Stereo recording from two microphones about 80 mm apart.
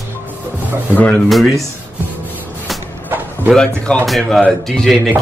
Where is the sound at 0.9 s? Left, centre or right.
Centre.